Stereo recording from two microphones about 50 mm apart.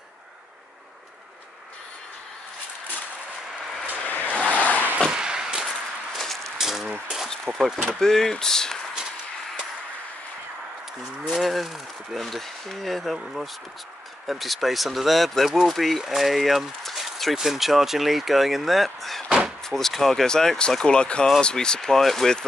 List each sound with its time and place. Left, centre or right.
4.0 s vehicle: left
4.3 s vehicle: left
5.1 s a sound: centre
6.1 s a sound: centre
7.4 s speech: centre
8.0 s speech: centre
11.3 s speech: centre
19.2 s door: centre
19.7 s speech: centre